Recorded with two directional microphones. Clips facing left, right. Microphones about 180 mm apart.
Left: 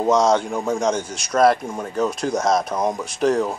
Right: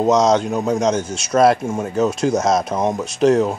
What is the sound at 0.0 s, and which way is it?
A man's voice, 20° right (ahead or behind).